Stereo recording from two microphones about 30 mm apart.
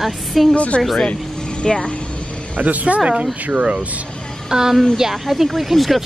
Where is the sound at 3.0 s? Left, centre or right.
Right.